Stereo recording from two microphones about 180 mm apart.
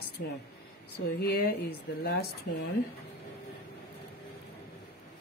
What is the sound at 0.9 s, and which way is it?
Speech, 60° left (ahead or behind).